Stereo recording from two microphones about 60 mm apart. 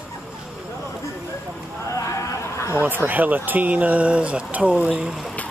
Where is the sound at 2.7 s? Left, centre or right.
Right.